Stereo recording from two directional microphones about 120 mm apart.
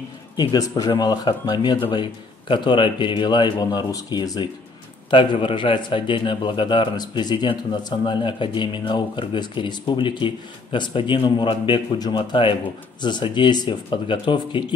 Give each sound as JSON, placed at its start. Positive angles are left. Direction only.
{"t": 0.4, "sound": "a man's voice", "side_deg": 35}
{"t": 5.1, "sound": "a man's voice", "side_deg": 45}